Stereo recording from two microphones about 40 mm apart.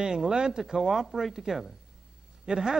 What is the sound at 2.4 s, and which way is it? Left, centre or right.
Speech, centre.